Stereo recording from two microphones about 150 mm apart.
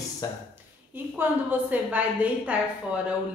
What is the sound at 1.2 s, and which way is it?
A woman's voice, 10° right (ahead or behind).